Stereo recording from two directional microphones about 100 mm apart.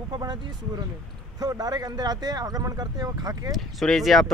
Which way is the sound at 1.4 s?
40° right (ahead or behind).